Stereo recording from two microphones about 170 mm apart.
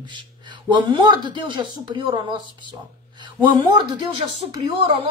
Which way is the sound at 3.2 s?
25° right (ahead or behind).